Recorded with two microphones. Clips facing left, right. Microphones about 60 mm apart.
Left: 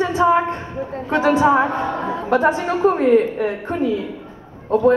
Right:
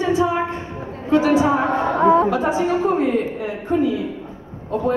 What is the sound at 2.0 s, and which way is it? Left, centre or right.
Music, right.